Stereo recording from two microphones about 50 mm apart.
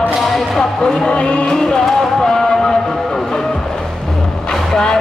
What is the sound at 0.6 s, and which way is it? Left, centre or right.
Speech, centre.